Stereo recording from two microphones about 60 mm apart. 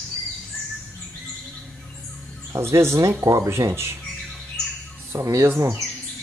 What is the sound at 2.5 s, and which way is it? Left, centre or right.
Speech, right.